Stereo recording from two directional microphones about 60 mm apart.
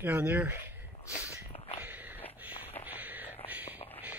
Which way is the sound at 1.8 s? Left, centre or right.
Right.